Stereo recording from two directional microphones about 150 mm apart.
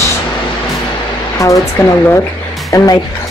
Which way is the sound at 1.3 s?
20° left (ahead or behind).